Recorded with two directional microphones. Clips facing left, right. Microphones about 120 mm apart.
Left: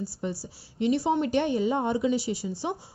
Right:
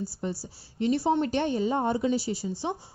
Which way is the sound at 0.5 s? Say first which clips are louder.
Left 1 dB; 30° right (ahead or behind).